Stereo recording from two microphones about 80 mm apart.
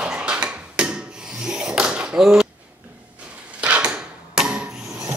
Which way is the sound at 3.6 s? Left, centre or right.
Centre.